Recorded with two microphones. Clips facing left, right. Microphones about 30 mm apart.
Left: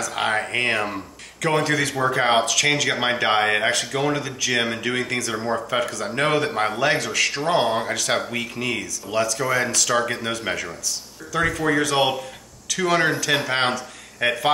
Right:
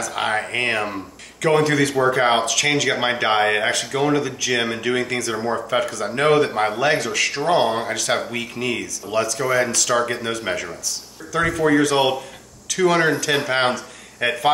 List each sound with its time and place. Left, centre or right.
0.0 s speech: centre